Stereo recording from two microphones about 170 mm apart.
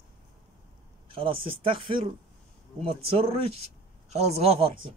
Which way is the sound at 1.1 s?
30° right (ahead or behind).